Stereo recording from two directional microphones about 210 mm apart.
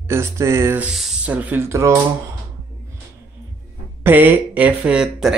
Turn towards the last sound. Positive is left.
turn(degrees=-5)  # may be behind; listen again after turning